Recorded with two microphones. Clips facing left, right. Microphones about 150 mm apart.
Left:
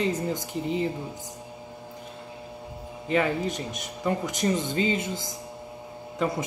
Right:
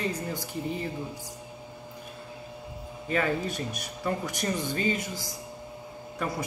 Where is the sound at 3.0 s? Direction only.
20° left (ahead or behind).